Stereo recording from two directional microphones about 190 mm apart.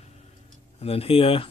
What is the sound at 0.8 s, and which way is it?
Speech, 30° left (ahead or behind).